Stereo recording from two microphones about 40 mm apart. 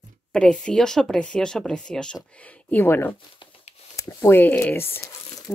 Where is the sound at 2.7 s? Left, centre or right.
Left.